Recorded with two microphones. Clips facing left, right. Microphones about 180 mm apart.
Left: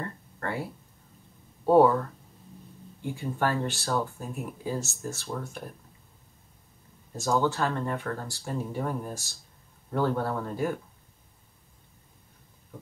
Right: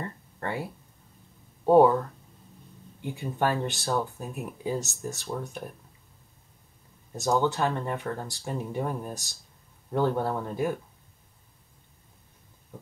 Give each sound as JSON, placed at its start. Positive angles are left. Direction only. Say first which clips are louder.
{"t": 0.0, "sound": "a sound", "louder": "even", "side_deg": -20}
{"t": 1.7, "sound": "speech", "louder": "right 1 dB", "side_deg": -15}
{"t": 3.3, "sound": "speech", "louder": "right 2 dB", "side_deg": -15}
{"t": 7.1, "sound": "speech", "louder": "right 1 dB", "side_deg": -15}